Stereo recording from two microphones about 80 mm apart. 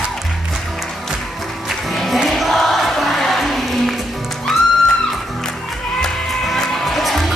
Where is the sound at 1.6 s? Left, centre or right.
Centre.